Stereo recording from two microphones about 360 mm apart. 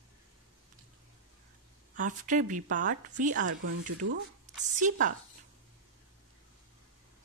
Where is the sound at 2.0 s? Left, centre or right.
Right.